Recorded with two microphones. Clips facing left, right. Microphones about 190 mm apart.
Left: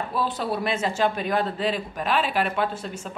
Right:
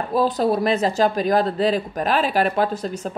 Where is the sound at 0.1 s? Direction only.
40° right (ahead or behind).